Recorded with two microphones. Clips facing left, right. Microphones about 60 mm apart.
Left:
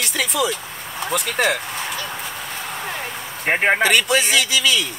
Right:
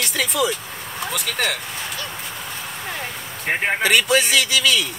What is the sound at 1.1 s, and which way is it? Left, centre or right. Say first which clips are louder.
Speech: left 5 dB; left.